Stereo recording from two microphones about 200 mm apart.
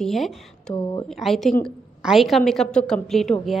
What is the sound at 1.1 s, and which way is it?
A woman's voice, centre (ahead or behind).